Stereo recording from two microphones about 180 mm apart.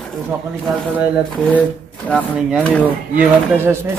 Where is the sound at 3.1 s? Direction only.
15° right (ahead or behind).